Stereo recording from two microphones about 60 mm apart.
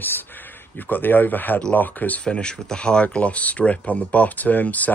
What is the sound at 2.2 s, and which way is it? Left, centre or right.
Speech, centre.